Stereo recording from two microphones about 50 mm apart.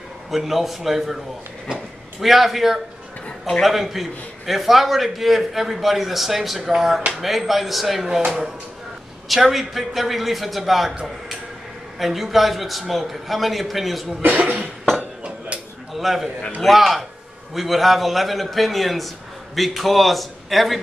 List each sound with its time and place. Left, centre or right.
0.3 s a man's voice: centre
2.1 s a man's voice: centre
9.3 s a man's voice: centre
12.0 s a man's voice: centre
14.2 s cough: right
15.0 s a sound: right
15.9 s a sound: centre
16.6 s a man's voice: centre